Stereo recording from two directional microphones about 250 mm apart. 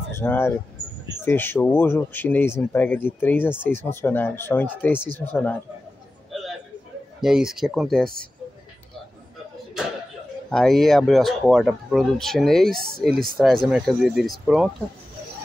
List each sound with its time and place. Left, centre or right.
0.1 s speech: centre
7.2 s speech: centre
10.5 s speech: centre
12.7 s speech: right
13.4 s speech: centre